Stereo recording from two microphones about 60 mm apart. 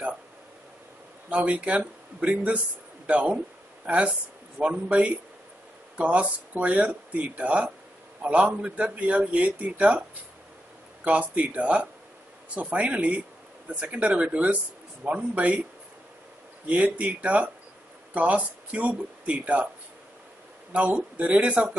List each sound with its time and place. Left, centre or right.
1.3 s a man's voice: right
11.1 s a man's voice: right
16.6 s a man's voice: right
20.7 s a man's voice: right